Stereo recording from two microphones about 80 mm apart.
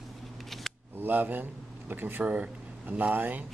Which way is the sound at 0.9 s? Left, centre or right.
Right.